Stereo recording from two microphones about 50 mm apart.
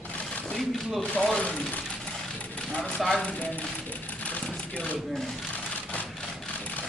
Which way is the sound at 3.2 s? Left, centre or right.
Left.